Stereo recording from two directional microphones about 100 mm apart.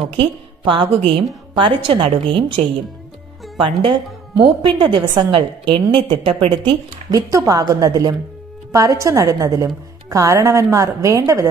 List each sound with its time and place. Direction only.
0.0 s a woman's voice: 65° right (ahead or behind)
7.1 s a woman's voice: 35° right (ahead or behind)